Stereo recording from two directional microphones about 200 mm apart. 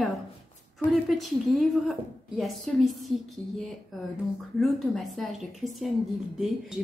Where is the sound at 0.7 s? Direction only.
Centre (ahead or behind).